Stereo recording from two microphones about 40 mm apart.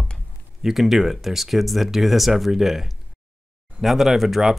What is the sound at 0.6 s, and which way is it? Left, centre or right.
Speech, centre.